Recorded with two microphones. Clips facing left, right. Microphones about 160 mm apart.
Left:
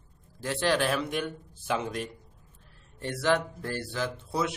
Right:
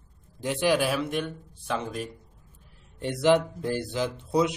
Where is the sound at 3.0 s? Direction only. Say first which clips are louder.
Right 5 dB; 20° right (ahead or behind).